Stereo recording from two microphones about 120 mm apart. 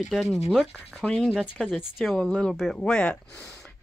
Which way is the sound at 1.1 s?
5° left (ahead or behind).